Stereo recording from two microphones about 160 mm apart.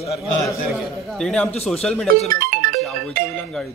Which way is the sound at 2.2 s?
60° right (ahead or behind).